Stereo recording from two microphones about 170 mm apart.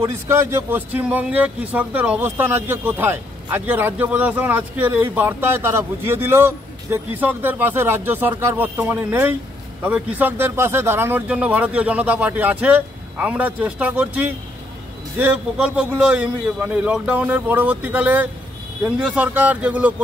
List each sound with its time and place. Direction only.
0.0 s speech: 15° right (ahead or behind)